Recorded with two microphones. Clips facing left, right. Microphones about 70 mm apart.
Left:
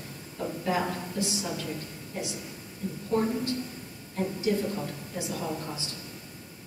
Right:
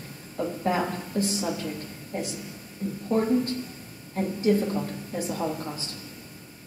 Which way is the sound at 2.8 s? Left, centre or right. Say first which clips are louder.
Right 4 dB; right.